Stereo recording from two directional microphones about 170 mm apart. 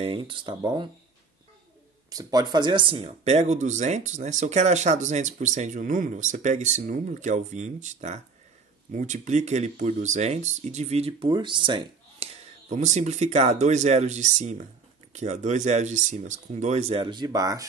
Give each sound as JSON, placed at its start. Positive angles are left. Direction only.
{"t": 0.0, "sound": "speech", "side_deg": -30}
{"t": 2.0, "sound": "speech", "side_deg": -20}
{"t": 12.6, "sound": "speech", "side_deg": -45}